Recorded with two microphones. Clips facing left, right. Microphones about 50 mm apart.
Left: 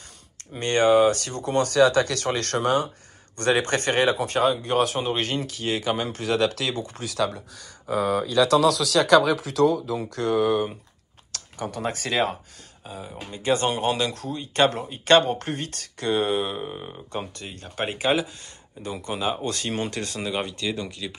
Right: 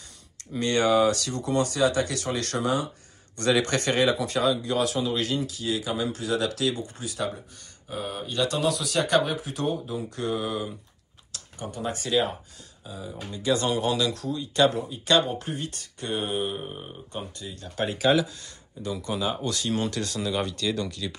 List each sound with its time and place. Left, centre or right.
0.5 s speech: left
3.3 s speech: left
8.6 s speech: left
11.3 s speech: left
12.8 s speech: left
17.6 s speech: left; by 21.1 s centre